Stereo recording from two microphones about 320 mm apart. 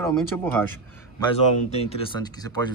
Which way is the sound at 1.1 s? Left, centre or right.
Centre.